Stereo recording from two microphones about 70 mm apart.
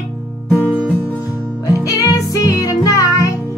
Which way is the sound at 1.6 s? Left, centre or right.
Left.